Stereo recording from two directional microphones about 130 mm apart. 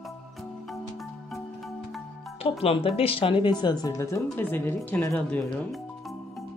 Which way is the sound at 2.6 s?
45° left (ahead or behind).